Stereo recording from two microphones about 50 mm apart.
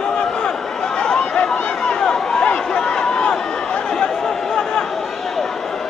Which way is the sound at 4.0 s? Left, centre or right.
Centre.